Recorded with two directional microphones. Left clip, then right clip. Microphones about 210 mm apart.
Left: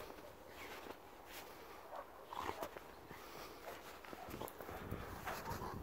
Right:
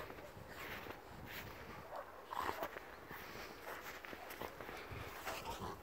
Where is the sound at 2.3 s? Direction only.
Centre (ahead or behind).